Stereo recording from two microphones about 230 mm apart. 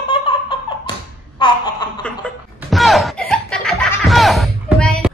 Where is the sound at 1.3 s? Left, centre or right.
Centre.